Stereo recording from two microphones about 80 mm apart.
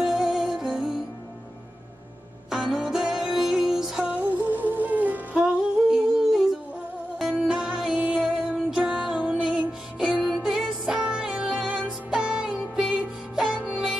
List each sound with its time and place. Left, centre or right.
0.0 s music: centre
2.5 s music: centre
4.1 s music: right
5.9 s music: centre